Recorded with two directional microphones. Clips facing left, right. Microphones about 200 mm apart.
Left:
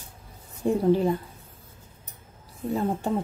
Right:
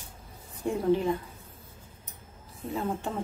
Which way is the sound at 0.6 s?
35° left (ahead or behind).